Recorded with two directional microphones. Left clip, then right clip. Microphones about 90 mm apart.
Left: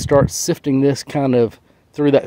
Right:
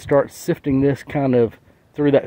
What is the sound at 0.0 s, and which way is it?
Speech, 35° left (ahead or behind).